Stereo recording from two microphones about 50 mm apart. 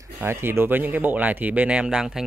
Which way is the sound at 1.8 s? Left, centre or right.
Centre.